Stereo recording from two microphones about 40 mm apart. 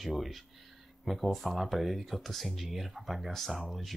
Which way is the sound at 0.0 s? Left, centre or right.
Centre.